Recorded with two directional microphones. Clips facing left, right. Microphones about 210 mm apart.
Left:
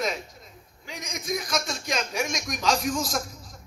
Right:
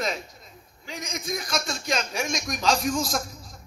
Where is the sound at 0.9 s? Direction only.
30° right (ahead or behind).